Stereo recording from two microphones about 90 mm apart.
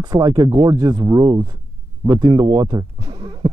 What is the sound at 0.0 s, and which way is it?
Speech, 45° right (ahead or behind).